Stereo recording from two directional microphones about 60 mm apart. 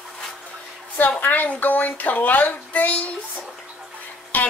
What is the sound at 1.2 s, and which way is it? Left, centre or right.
Speech, left.